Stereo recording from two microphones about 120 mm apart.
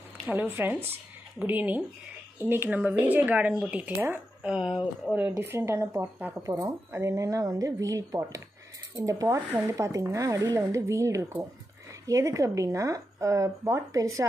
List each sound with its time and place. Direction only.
0.3 s speech: 15° right (ahead or behind)
5.4 s speech: 20° right (ahead or behind)